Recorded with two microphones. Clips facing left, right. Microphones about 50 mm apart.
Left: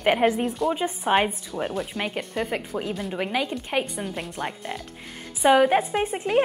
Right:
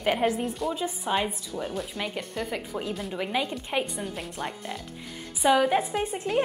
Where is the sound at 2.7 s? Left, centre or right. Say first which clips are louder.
Left 2 dB; centre.